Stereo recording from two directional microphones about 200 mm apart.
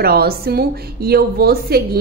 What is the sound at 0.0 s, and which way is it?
A woman's voice, 50° right (ahead or behind).